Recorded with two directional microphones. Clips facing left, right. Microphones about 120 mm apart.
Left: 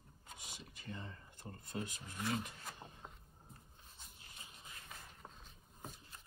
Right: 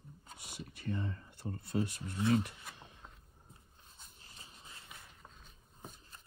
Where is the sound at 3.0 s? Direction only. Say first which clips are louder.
Left 2 dB; 5° left (ahead or behind).